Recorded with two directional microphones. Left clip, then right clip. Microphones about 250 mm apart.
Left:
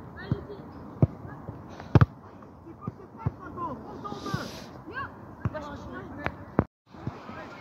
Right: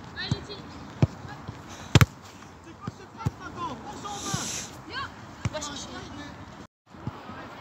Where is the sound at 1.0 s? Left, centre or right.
Centre.